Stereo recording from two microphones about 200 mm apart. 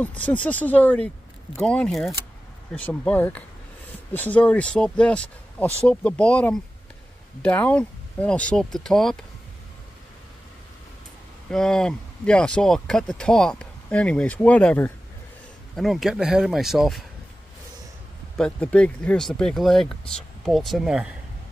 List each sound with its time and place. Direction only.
0.0 s speech: 5° left (ahead or behind)
11.5 s speech: 5° left (ahead or behind)
18.4 s speech: 5° left (ahead or behind)